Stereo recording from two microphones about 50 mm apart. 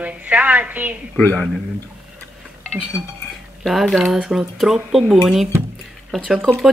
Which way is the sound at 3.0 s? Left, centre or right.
Right.